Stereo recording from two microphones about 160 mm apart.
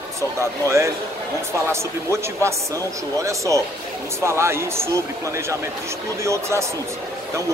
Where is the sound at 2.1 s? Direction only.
15° right (ahead or behind).